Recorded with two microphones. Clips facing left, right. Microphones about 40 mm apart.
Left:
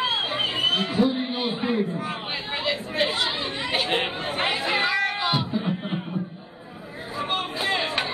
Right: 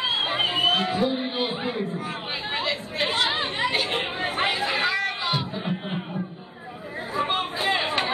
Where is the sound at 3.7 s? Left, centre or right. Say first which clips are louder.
Left 2 dB; centre.